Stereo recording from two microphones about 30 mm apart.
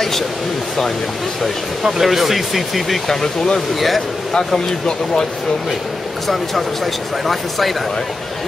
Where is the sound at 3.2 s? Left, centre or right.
Centre.